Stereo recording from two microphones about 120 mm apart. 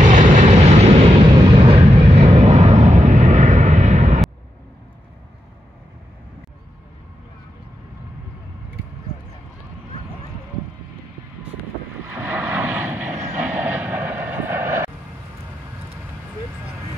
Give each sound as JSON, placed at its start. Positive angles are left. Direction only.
{"t": 0.0, "sound": "vehicle", "side_deg": -90}
{"t": 0.5, "sound": "vehicle", "side_deg": -60}
{"t": 12.1, "sound": "vehicle", "side_deg": -15}